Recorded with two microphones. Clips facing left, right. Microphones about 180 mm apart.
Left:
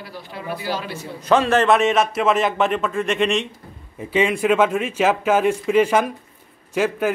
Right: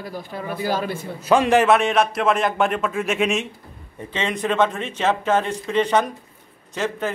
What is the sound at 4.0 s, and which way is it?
Speech, 10° left (ahead or behind).